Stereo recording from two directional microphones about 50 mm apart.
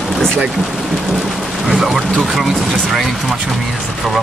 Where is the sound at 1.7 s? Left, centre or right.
Centre.